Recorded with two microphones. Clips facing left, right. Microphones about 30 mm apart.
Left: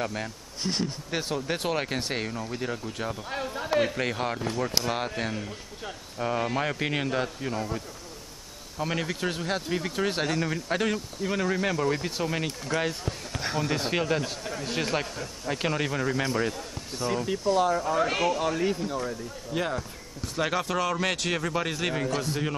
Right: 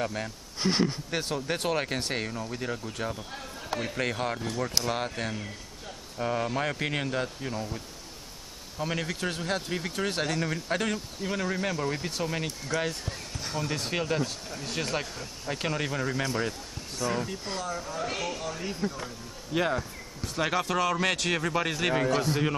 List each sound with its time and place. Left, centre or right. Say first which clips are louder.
0.0 s speech: even; centre
0.6 s a man's voice: right 4 dB; centre
1.1 s speech: left 1 dB; centre
3.5 s a man's voice: left 8 dB; left
3.9 s speech: left 1 dB; centre
8.7 s speech: left 2 dB; centre
13.3 s a sound: left 6 dB; left
13.6 s speech: left 3 dB; centre
17.0 s speech: left 4 dB; centre
19.5 s a man's voice: right 2 dB; centre